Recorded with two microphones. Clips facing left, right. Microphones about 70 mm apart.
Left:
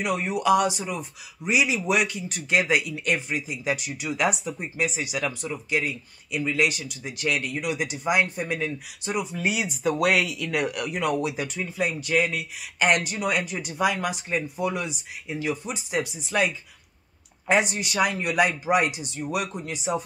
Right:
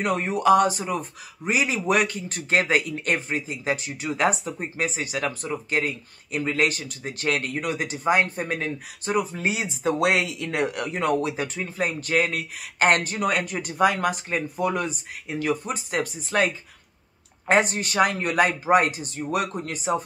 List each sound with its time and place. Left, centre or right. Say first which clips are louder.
0.0 s speech: right 3 dB; right